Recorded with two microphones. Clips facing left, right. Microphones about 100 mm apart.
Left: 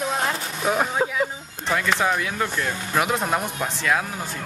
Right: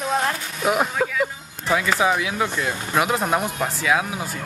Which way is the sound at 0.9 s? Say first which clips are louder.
Even; 20° left (ahead or behind).